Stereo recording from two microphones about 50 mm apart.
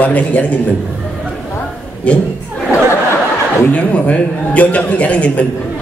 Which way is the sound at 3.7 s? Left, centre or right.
Left.